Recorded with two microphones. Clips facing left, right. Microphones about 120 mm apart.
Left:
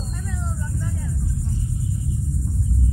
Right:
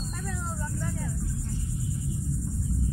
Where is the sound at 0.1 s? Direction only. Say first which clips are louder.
Left 3 dB; centre (ahead or behind).